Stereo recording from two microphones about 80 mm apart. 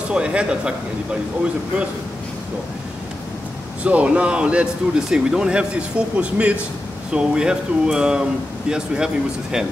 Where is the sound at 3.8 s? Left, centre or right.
Centre.